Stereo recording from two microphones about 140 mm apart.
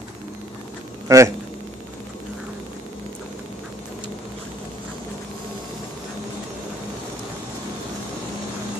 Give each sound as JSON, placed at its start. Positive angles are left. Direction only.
{"t": 1.0, "sound": "a man's voice", "side_deg": -20}